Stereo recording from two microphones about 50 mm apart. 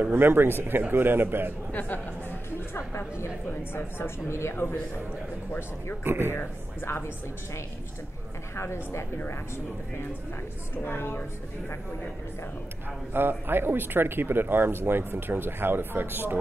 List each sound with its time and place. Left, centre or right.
0.1 s speech: right
1.7 s speech: left
2.7 s a woman's voice: left
6.0 s speech: right
6.8 s a woman's voice: left
8.5 s a woman's voice: left
10.8 s a woman's voice: left
13.1 s speech: right